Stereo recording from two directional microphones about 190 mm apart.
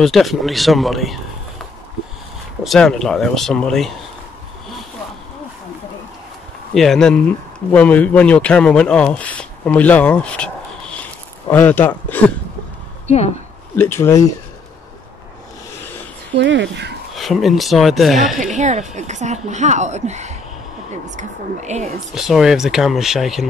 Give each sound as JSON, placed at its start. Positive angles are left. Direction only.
{"t": 0.0, "sound": "speech", "side_deg": 0}
{"t": 2.6, "sound": "speech", "side_deg": 0}
{"t": 6.7, "sound": "speech", "side_deg": 0}
{"t": 13.0, "sound": "speech", "side_deg": 35}
{"t": 13.7, "sound": "speech", "side_deg": 10}
{"t": 16.3, "sound": "speech", "side_deg": -70}
{"t": 17.1, "sound": "speech", "side_deg": 0}
{"t": 18.4, "sound": "speech", "side_deg": -40}
{"t": 22.1, "sound": "speech", "side_deg": 0}